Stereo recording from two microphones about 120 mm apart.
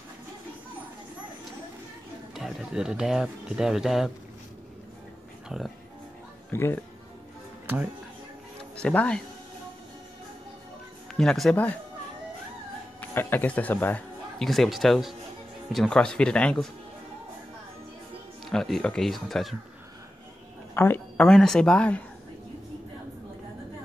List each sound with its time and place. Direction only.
2.3 s speech: 5° right (ahead or behind)
5.5 s music: centre (ahead or behind)
6.5 s speech: 20° left (ahead or behind)
7.6 s speech: 10° right (ahead or behind)
8.7 s speech: 10° left (ahead or behind)
11.1 s speech: 5° left (ahead or behind)
13.0 s speech: 15° left (ahead or behind)
14.4 s speech: centre (ahead or behind)
18.4 s speech: centre (ahead or behind)
20.7 s a woman's voice: 20° left (ahead or behind)
21.3 s speech: 5° left (ahead or behind)